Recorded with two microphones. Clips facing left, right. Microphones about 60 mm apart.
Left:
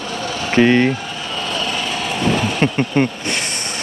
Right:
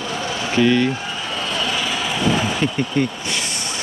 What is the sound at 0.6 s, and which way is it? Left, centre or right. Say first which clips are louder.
Speech: left 3 dB; left.